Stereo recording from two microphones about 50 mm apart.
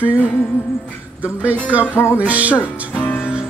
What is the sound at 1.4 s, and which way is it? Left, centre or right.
Speech, right.